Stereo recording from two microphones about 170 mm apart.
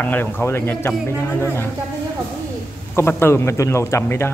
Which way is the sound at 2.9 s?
15° left (ahead or behind).